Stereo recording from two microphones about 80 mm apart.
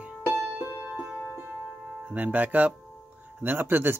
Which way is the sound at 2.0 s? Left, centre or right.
Right.